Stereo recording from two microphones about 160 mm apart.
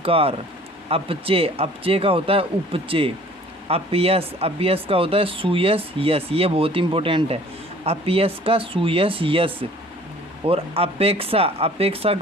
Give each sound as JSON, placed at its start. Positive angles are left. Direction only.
{"t": 0.0, "sound": "speech", "side_deg": -35}